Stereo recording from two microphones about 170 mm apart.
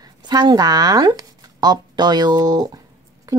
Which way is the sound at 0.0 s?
25° right (ahead or behind).